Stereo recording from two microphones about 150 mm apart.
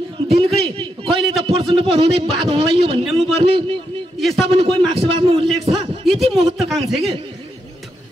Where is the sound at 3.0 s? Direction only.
Centre (ahead or behind).